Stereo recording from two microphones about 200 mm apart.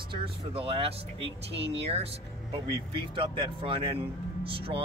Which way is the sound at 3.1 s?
25° right (ahead or behind).